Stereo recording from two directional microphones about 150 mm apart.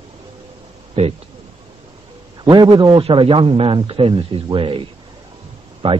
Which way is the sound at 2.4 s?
30° right (ahead or behind).